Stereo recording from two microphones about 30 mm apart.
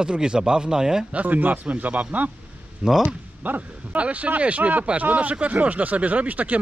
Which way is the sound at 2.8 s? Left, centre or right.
Centre.